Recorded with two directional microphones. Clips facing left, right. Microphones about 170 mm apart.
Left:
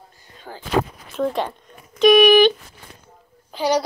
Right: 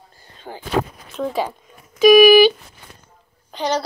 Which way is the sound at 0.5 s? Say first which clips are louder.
Right 3 dB; 25° right (ahead or behind).